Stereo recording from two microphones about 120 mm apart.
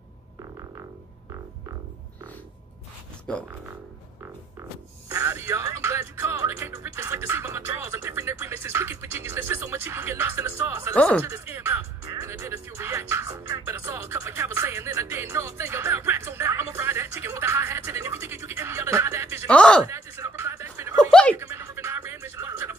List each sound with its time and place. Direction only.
3.3 s speech: 5° left (ahead or behind)
5.1 s music: 25° right (ahead or behind)
11.0 s speech: 10° left (ahead or behind)
11.2 s music: 25° right (ahead or behind)
19.4 s speech: 10° left (ahead or behind)
19.9 s music: 20° right (ahead or behind)
21.1 s music: 10° left (ahead or behind)
21.4 s music: 20° right (ahead or behind)